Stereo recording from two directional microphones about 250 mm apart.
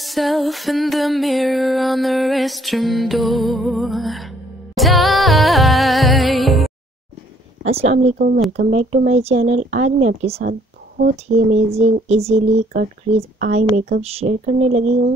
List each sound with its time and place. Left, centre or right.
0.0 s music: centre
7.6 s speech: right